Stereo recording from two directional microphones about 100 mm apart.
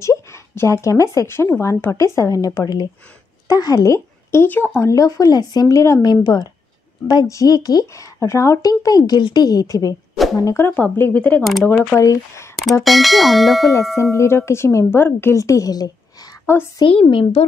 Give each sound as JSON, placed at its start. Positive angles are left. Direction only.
{"t": 0.0, "sound": "a woman's voice", "side_deg": 30}
{"t": 12.0, "sound": "speech", "side_deg": 30}
{"t": 12.8, "sound": "speech", "side_deg": 0}
{"t": 14.1, "sound": "a woman's voice", "side_deg": 25}
{"t": 16.5, "sound": "a woman's voice", "side_deg": 25}
{"t": 16.8, "sound": "speech", "side_deg": 60}